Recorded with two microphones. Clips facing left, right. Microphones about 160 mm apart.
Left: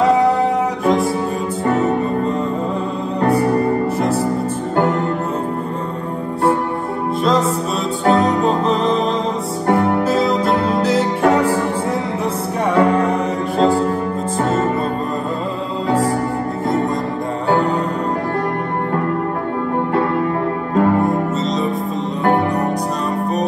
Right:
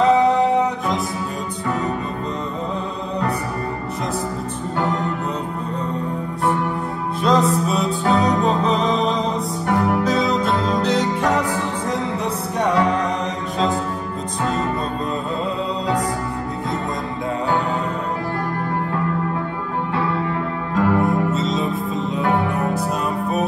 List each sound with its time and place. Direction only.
7.2 s music: centre (ahead or behind)
8.0 s music: 40° left (ahead or behind)
8.4 s music: centre (ahead or behind)
12.7 s music: 55° left (ahead or behind)
20.7 s music: 40° left (ahead or behind)
21.3 s music: centre (ahead or behind)